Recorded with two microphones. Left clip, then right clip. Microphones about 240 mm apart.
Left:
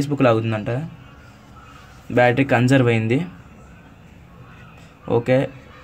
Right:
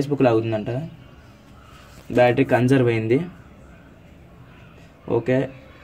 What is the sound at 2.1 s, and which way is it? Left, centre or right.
Speech, left.